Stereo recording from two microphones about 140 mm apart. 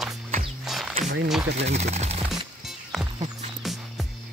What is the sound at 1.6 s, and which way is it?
Speech, 50° right (ahead or behind).